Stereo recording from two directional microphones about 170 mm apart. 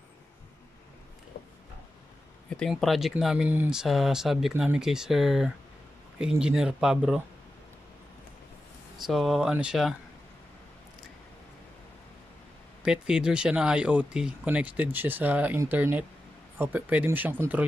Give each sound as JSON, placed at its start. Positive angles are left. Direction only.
{"t": 1.3, "sound": "a sound", "side_deg": 65}
{"t": 2.5, "sound": "speech", "side_deg": 0}
{"t": 9.0, "sound": "speech", "side_deg": 0}
{"t": 12.8, "sound": "speech", "side_deg": -5}